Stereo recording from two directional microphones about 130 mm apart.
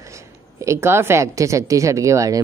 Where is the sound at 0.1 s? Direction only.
25° right (ahead or behind).